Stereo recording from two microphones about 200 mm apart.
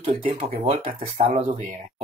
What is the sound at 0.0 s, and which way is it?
Speech, 30° right (ahead or behind).